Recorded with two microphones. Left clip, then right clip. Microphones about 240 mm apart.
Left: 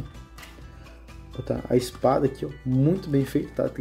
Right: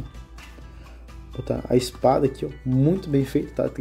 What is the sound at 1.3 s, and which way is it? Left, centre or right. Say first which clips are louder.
Speech: right 2 dB; centre.